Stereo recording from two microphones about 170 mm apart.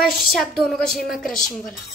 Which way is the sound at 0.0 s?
Centre (ahead or behind).